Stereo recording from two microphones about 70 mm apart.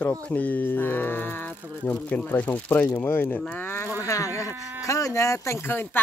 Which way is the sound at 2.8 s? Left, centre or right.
Left.